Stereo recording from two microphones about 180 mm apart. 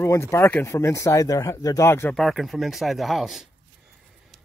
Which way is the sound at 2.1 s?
Centre (ahead or behind).